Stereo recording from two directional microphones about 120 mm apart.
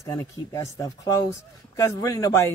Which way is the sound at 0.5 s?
25° left (ahead or behind).